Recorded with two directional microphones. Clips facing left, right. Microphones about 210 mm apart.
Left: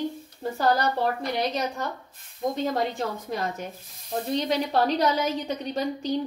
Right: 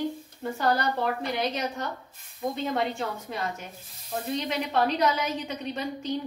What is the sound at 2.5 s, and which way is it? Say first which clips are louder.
A woman's voice: left 1 dB; 35° left (ahead or behind).